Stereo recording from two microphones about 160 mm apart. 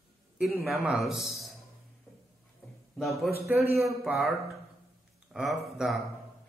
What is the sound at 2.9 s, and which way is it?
Speech, centre (ahead or behind).